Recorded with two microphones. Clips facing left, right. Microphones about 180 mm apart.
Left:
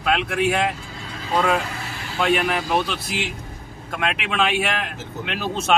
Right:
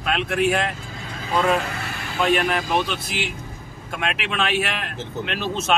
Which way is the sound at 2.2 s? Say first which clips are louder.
Even; 5° left (ahead or behind).